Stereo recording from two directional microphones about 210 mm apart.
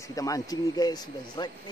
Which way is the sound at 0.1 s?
15° left (ahead or behind).